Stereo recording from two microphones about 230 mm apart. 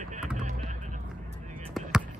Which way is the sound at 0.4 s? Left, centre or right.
Right.